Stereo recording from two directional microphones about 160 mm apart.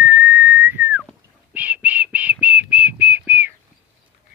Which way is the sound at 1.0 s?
10° right (ahead or behind).